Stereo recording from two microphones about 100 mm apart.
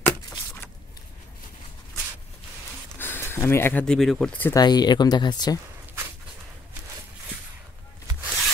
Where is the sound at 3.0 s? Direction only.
20° left (ahead or behind).